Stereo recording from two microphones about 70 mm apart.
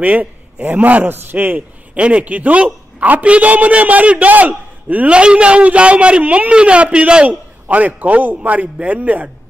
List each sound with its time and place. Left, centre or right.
0.0 s a man's voice: right
2.0 s a man's voice: centre